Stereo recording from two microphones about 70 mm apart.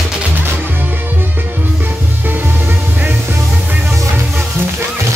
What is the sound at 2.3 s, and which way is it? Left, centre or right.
Music, right.